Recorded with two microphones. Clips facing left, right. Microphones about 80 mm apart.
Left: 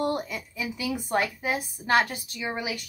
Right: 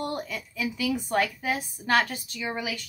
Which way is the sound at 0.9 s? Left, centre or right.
Centre.